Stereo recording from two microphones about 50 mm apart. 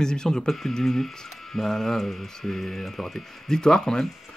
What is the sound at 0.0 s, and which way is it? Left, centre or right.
Speech, centre.